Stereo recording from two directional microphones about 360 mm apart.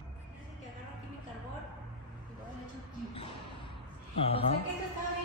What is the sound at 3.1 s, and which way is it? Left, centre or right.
Basketball bounce, centre.